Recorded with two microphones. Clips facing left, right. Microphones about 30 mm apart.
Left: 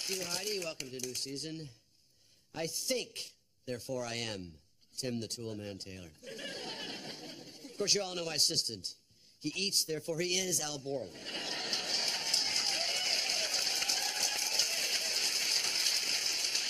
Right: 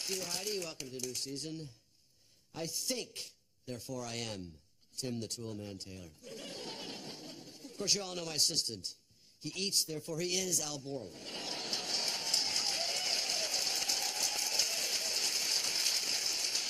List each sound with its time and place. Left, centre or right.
0.0 s speech: centre
2.7 s speech: centre
9.8 s a sound: left